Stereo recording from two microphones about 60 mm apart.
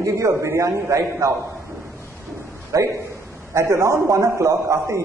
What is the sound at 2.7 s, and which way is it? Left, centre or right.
Speech, right.